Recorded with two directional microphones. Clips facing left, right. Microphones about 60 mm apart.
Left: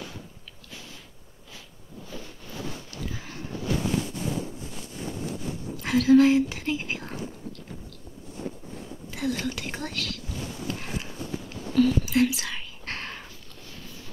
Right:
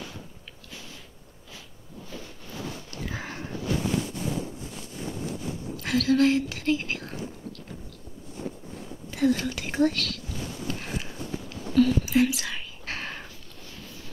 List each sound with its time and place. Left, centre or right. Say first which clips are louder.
3.1 s sniff: right 4 dB; right
5.8 s speech: left 4 dB; centre
9.1 s speech: right 5 dB; centre
11.7 s whispering: right 1 dB; centre